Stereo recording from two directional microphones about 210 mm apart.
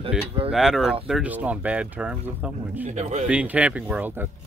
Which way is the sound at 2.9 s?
35° right (ahead or behind).